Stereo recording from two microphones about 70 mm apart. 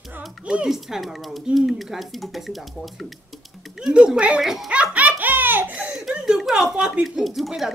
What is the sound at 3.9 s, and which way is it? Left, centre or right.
Speech, centre.